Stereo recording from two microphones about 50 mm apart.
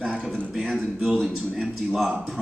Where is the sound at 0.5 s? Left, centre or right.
Centre.